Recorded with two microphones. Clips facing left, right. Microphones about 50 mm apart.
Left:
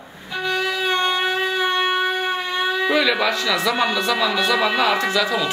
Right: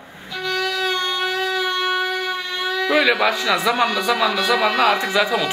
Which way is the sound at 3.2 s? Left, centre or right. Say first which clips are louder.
Right 2 dB; centre.